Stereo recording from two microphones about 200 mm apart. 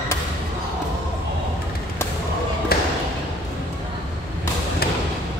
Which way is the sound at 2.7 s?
50° left (ahead or behind).